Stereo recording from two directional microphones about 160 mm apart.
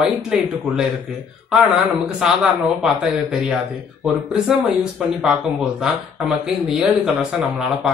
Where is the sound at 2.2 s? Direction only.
5° right (ahead or behind).